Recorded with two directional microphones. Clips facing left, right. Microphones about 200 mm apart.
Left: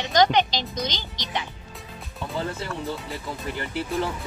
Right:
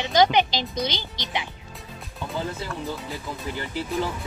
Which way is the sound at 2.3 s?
Centre (ahead or behind).